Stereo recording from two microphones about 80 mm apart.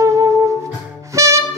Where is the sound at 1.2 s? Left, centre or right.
Right.